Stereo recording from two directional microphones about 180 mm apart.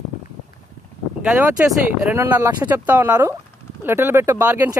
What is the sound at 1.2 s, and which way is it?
Speech, 5° right (ahead or behind).